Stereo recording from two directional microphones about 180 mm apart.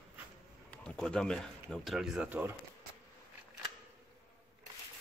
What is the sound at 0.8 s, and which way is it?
Speech, 5° left (ahead or behind).